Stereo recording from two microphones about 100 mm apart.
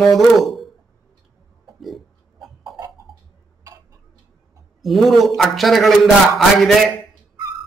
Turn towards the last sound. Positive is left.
turn(degrees=0)  # may be behind; listen again after turning